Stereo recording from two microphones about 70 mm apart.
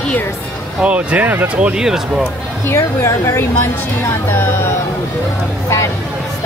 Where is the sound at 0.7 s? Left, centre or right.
Centre.